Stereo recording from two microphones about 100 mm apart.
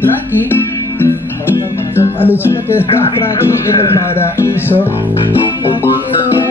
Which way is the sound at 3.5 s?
30° left (ahead or behind).